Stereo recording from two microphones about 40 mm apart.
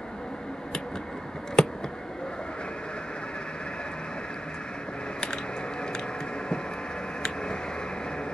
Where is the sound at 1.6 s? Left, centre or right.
Centre.